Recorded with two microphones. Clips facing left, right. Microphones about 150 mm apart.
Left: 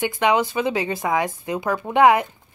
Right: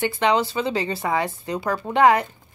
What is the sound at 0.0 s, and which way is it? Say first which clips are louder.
Speech: left 1 dB; 15° left (ahead or behind).